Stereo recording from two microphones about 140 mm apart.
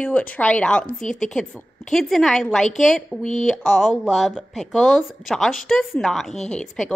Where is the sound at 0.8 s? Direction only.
65° left (ahead or behind).